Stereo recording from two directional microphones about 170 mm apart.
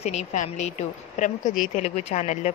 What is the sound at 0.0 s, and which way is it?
Speech, 40° left (ahead or behind).